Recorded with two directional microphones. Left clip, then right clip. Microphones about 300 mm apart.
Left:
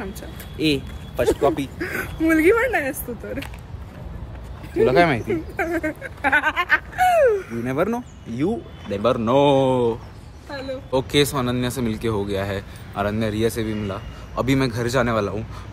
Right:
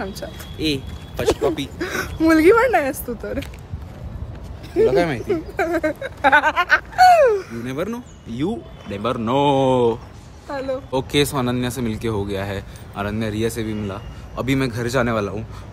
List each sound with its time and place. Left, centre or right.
0.6 s speech: centre
1.9 s speech: centre
4.8 s speech: left
5.3 s speech: centre
7.6 s speech: centre
8.3 s speech: centre
10.5 s speech: right
10.9 s speech: centre